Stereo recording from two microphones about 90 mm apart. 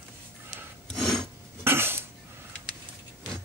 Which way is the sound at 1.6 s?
25° right (ahead or behind).